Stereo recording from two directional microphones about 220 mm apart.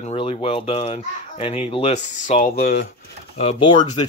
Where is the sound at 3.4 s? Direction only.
30° left (ahead or behind).